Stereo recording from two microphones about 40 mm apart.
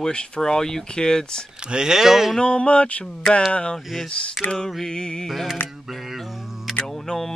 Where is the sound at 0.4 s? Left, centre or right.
Centre.